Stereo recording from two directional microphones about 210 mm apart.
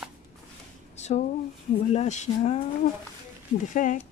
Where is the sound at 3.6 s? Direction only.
35° left (ahead or behind).